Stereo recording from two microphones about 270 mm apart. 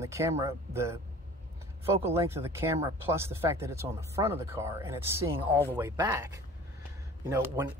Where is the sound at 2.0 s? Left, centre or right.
Centre.